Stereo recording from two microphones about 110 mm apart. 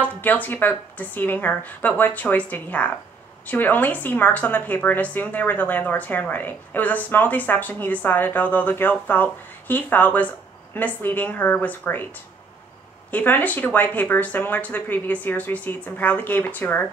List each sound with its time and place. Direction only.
0.0 s a woman's voice: 15° left (ahead or behind)
13.1 s a woman's voice: 15° left (ahead or behind)